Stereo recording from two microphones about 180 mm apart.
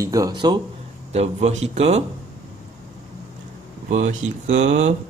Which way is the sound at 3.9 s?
45° right (ahead or behind).